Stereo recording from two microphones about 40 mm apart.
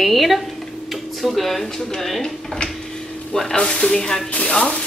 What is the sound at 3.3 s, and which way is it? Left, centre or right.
Speech, centre.